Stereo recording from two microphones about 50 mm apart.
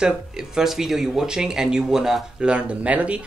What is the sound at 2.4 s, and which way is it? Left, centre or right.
Speech, right.